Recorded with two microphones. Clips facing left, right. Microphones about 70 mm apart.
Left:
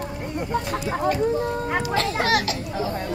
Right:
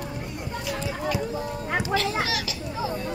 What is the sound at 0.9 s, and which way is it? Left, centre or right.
Speech, left.